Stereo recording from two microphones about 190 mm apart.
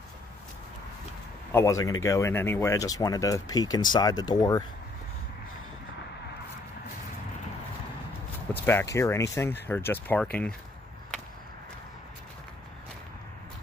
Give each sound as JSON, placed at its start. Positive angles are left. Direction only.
{"t": 1.5, "sound": "speech", "side_deg": 15}
{"t": 8.6, "sound": "speech", "side_deg": 15}